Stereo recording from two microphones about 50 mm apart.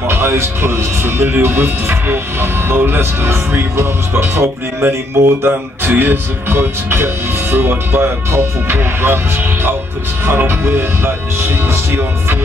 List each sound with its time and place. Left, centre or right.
0.1 s speech: right